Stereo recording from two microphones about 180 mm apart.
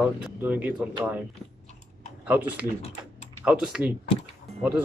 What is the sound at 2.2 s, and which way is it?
Speech, 10° right (ahead or behind).